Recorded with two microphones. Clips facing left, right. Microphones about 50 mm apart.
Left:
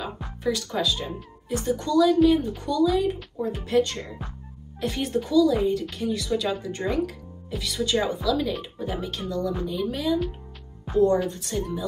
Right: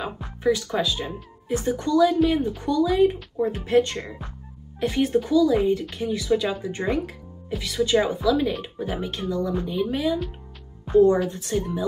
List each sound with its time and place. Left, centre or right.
0.4 s speech: right
11.5 s music: centre